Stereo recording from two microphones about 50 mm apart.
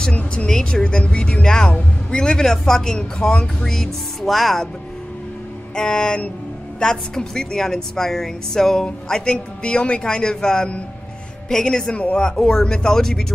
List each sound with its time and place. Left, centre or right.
0.2 s speech: left
0.5 s a woman's voice: centre
5.8 s a woman's voice: centre